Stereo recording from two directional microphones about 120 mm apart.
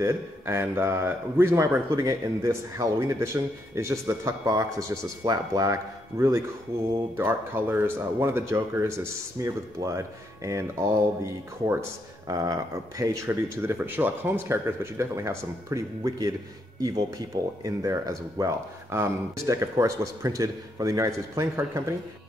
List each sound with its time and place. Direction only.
0.0 s speech: 20° right (ahead or behind)